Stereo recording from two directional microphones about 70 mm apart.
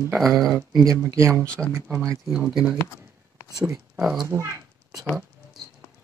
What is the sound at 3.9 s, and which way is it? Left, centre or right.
Speech, centre.